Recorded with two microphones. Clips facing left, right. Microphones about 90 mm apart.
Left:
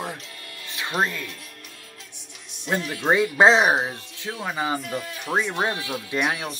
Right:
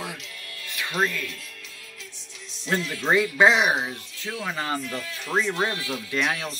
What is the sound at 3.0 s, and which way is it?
Speech, 20° left (ahead or behind).